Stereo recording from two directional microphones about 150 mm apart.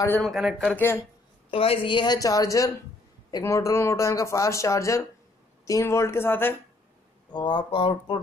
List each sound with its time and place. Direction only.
0.2 s speech: centre (ahead or behind)
0.7 s speech: 15° left (ahead or behind)
1.5 s a man's voice: 40° left (ahead or behind); by 6.5 s 15° left (ahead or behind)
7.3 s speech: 30° left (ahead or behind)